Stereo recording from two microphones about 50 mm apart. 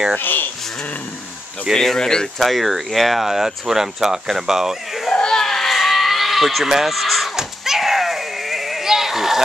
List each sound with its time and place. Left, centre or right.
0.2 s speech: left
1.7 s speech: centre
2.3 s speech: centre
5.1 s screaming: centre
5.7 s a sound: centre